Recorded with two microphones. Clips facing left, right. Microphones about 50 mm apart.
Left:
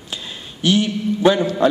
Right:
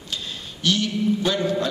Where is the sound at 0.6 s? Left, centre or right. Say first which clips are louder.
Left 5 dB; centre.